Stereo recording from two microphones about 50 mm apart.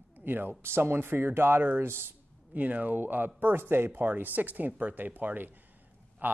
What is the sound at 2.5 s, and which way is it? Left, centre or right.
Speech, right.